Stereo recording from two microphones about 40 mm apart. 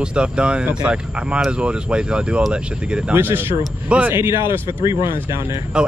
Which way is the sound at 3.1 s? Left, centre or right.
Right.